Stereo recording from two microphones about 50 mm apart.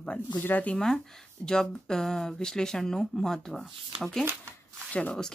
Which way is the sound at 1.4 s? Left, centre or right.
Centre.